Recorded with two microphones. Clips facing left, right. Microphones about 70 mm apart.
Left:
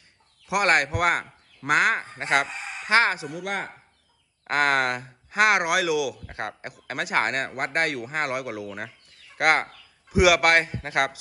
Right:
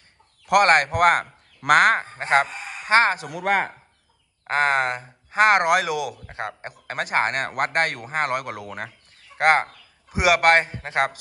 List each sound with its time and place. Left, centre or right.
0.5 s speech: right
2.1 s speech: right
3.3 s speech: right
4.5 s speech: right
6.2 s speech: right
6.9 s speech: right
7.4 s speech: right
9.4 s a man's voice: right